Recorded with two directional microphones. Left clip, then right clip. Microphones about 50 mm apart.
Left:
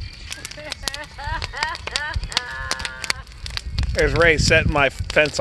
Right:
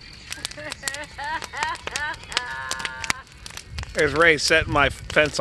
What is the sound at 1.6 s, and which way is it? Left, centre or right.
Speech, centre.